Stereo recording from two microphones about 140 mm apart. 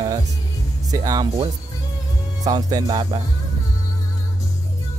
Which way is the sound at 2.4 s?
30° right (ahead or behind).